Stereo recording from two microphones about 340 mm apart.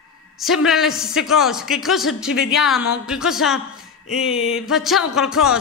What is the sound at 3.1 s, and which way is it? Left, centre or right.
A man's voice, centre.